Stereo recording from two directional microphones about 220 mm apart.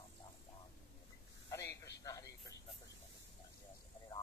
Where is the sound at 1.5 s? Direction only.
10° left (ahead or behind).